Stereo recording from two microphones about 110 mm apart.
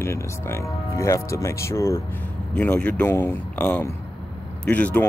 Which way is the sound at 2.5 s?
15° left (ahead or behind).